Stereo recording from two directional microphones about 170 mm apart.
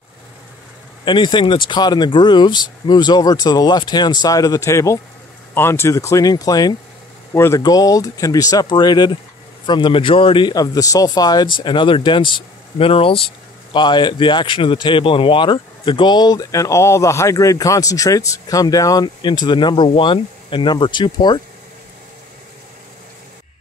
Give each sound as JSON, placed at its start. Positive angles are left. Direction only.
{"t": 1.0, "sound": "speech", "side_deg": 30}